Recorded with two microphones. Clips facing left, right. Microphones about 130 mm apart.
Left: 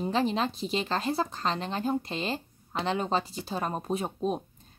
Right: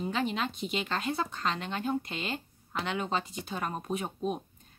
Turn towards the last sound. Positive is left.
turn(degrees=35)  # may be behind; listen again after turning